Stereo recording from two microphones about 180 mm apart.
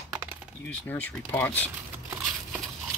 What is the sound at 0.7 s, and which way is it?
Speech, 10° left (ahead or behind).